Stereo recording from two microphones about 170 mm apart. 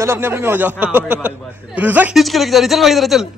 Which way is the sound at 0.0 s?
15° right (ahead or behind).